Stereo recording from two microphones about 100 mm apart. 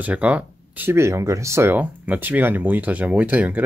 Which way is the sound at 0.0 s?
15° right (ahead or behind).